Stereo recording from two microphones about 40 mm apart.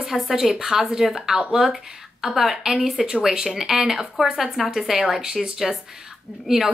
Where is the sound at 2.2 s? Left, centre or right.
Centre.